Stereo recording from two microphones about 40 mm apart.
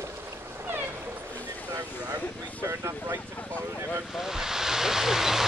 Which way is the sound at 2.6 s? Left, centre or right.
Right.